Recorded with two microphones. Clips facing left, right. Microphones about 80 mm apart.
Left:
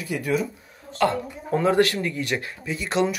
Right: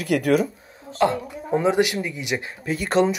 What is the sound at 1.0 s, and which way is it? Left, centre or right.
Speech, right.